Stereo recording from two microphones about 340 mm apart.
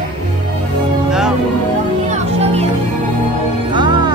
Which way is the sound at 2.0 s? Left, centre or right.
Centre.